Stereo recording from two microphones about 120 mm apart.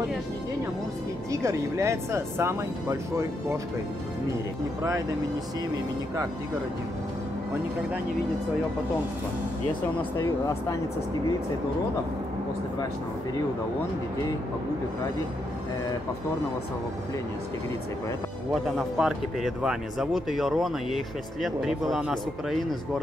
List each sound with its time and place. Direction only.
1.3 s speech: 25° right (ahead or behind)
10.1 s speech: 20° left (ahead or behind)
18.5 s a man's voice: centre (ahead or behind)